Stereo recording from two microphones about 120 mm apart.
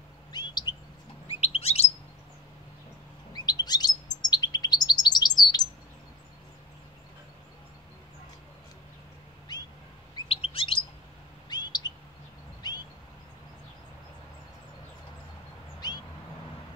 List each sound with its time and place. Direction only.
0.3 s chirp: 35° left (ahead or behind)
1.3 s chirp: 60° left (ahead or behind)
3.3 s chirp: 35° left (ahead or behind)
10.1 s chirp: 50° left (ahead or behind)
11.5 s chirp: 35° left (ahead or behind)
12.6 s a sound: 35° left (ahead or behind)
15.8 s a sound: 35° left (ahead or behind)